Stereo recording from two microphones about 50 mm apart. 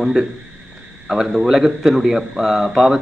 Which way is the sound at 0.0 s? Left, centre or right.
Centre.